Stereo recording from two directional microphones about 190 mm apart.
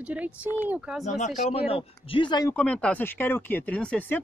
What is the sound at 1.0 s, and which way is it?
Speech, 35° left (ahead or behind).